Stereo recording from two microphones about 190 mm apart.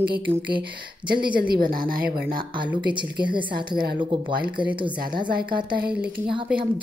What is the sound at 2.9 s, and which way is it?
Speech, 25° right (ahead or behind).